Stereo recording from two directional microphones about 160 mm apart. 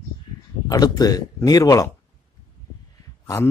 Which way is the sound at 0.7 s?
25° left (ahead or behind).